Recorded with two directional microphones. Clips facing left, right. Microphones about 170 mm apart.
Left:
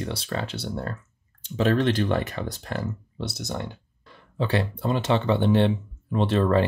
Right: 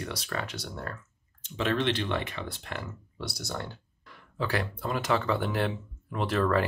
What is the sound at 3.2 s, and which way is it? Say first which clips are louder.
Speech: left 5 dB; 20° left (ahead or behind).